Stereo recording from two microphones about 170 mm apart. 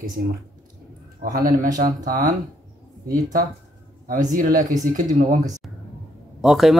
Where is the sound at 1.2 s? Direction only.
55° right (ahead or behind).